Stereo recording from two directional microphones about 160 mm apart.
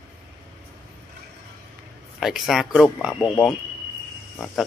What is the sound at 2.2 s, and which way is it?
Speech, centre (ahead or behind).